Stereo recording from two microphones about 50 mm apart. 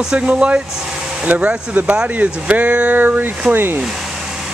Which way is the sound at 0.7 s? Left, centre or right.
Centre.